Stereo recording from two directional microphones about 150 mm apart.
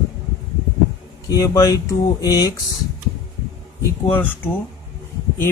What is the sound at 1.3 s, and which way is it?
Speech, 25° left (ahead or behind).